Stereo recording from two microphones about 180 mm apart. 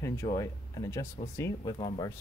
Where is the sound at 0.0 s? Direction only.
15° left (ahead or behind).